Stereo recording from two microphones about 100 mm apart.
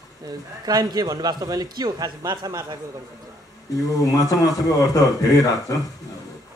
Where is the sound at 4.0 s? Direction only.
35° left (ahead or behind).